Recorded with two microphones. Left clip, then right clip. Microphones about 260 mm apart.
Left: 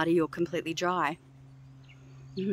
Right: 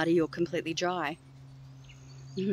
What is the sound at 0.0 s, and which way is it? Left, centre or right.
Speech, centre.